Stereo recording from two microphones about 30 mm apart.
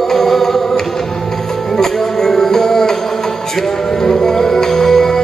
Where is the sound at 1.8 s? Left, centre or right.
Centre.